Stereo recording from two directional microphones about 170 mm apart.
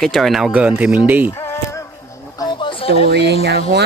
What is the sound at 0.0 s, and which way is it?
Speech, centre (ahead or behind).